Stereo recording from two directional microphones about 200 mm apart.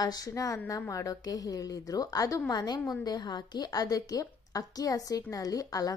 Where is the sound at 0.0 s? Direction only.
20° left (ahead or behind).